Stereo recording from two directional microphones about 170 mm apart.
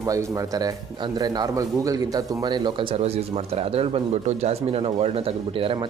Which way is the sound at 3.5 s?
35° right (ahead or behind).